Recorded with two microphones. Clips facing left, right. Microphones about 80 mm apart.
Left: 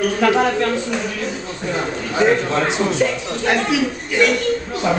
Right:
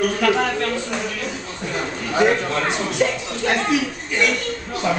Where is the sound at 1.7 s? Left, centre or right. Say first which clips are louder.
Left 3 dB; centre.